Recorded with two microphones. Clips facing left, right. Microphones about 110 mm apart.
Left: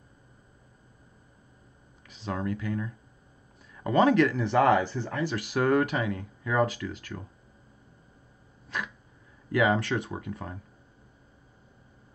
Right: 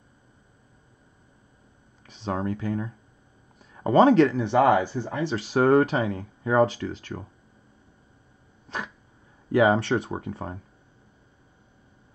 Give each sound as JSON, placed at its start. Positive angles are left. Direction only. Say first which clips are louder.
{"t": 2.0, "sound": "speech", "louder": "right 3 dB", "side_deg": -25}
{"t": 5.2, "sound": "speech", "louder": "right 5 dB", "side_deg": -30}
{"t": 8.6, "sound": "dog", "louder": "right 1 dB", "side_deg": -30}
{"t": 9.5, "sound": "speech", "louder": "right 5 dB", "side_deg": -30}